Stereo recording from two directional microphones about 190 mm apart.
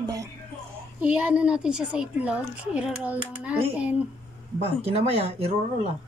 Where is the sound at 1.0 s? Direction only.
5° right (ahead or behind).